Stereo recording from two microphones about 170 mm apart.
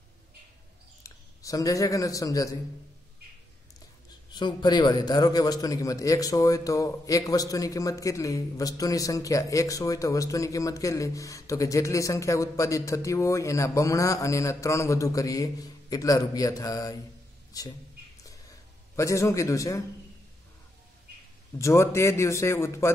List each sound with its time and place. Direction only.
1.0 s speech: 20° left (ahead or behind)
4.3 s a man's voice: 25° left (ahead or behind)
17.5 s a sound: 20° left (ahead or behind)
18.9 s speech: 15° left (ahead or behind)
21.5 s speech: 15° left (ahead or behind)